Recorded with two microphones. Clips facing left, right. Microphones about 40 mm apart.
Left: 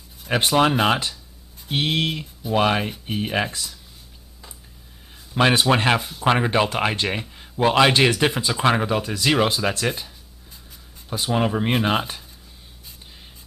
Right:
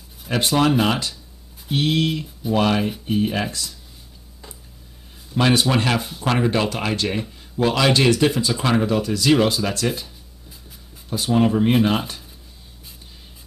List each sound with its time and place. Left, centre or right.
0.3 s speech: centre
2.8 s speech: centre
3.2 s speech: centre
5.3 s speech: left
11.3 s speech: centre